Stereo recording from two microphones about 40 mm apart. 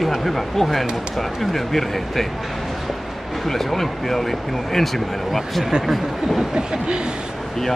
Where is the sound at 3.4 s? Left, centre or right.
Centre.